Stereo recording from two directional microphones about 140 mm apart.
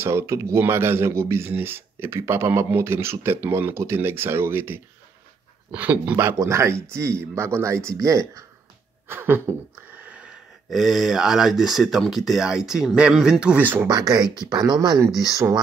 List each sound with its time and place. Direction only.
0.0 s speech: 20° right (ahead or behind)
13.8 s speech: 25° right (ahead or behind)